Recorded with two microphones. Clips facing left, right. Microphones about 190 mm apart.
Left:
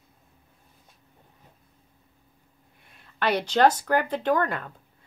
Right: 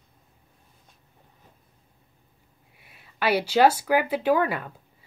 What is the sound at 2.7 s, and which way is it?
A woman's voice, 5° right (ahead or behind).